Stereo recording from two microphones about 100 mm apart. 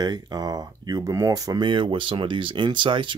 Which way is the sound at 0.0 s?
40° right (ahead or behind).